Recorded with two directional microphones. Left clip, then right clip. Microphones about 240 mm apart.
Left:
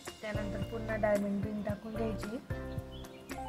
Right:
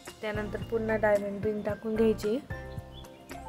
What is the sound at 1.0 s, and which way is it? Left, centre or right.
A woman's voice, right.